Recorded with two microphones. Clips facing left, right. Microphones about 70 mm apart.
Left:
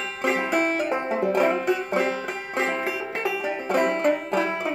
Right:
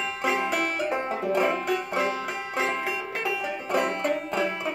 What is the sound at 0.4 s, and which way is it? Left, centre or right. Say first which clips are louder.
Music: left 3 dB; left.